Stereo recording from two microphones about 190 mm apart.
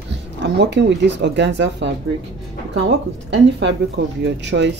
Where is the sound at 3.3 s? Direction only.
65° right (ahead or behind).